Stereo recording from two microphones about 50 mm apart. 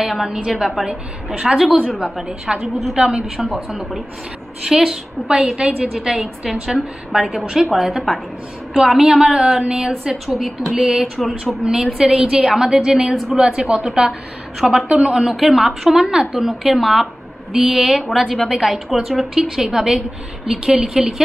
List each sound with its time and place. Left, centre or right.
0.0 s a woman's voice: centre
1.8 s a woman's voice: centre
2.0 s a woman's voice: centre
13.5 s a woman's voice: right
13.7 s a woman's voice: centre
14.9 s a woman's voice: right
15.1 s a woman's voice: centre